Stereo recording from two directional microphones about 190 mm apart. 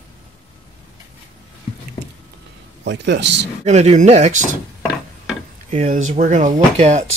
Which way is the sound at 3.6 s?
35° right (ahead or behind).